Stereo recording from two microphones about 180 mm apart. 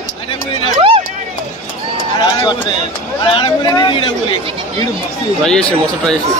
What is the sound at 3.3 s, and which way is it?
Speech, 30° left (ahead or behind).